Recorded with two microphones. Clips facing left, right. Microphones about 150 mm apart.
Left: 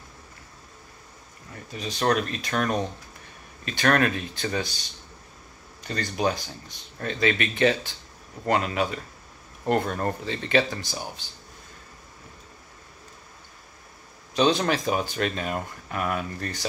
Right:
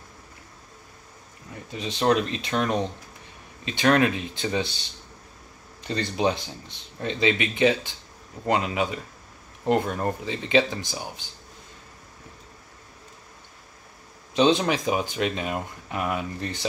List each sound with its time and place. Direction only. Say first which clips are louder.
1.7 s speech: right 2 dB; 25° right (ahead or behind)
5.9 s speech: right 2 dB; 25° right (ahead or behind)
14.3 s speech: right 2 dB; 25° right (ahead or behind)
14.6 s speech: even; 15° right (ahead or behind)